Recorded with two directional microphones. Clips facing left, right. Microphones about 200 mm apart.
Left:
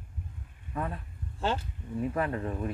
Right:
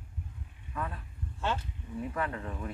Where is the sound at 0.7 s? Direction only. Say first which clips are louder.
Left 3 dB; 35° left (ahead or behind).